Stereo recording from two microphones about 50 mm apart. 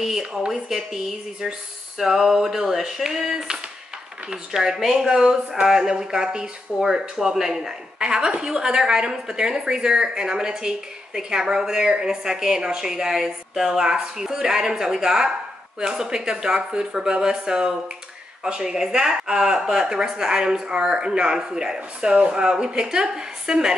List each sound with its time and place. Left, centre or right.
0.0 s speech: centre